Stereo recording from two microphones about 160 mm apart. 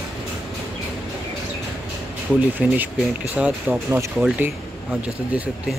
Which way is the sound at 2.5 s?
10° right (ahead or behind).